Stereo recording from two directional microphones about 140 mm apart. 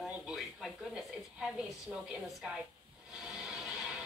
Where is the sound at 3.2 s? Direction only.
5° right (ahead or behind).